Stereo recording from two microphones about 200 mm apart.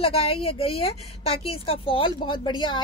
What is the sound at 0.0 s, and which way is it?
A woman's voice, 30° left (ahead or behind).